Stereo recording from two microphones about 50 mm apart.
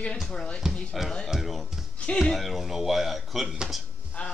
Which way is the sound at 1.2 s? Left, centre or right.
Centre.